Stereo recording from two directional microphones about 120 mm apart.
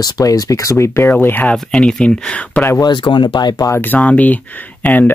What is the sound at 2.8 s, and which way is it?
Speech, 40° left (ahead or behind).